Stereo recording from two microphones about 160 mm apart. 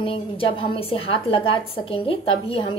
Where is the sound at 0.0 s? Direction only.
35° left (ahead or behind).